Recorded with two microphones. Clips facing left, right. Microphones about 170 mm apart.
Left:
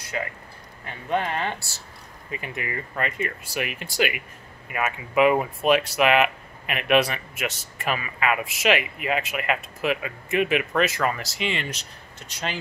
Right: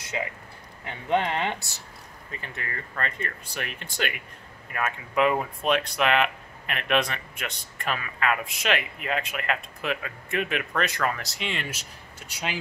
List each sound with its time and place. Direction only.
0.1 s speech: 20° right (ahead or behind)
2.3 s speech: 15° left (ahead or behind); by 12.5 s 10° right (ahead or behind)